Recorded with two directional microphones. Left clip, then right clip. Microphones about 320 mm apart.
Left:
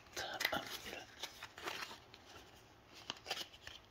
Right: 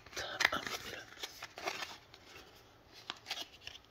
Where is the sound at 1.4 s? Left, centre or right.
Centre.